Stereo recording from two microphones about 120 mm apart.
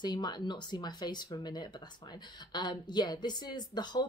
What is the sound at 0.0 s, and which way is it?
A woman's voice, 35° left (ahead or behind).